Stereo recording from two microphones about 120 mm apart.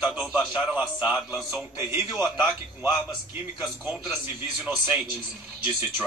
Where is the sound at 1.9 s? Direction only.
20° right (ahead or behind).